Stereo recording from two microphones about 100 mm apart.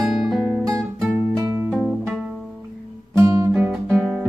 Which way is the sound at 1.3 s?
30° right (ahead or behind).